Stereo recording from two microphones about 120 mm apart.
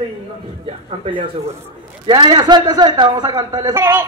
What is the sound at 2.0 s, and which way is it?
A man's voice, 40° right (ahead or behind).